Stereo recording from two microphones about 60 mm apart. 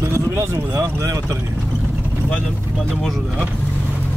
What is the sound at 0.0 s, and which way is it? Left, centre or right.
Speech, right.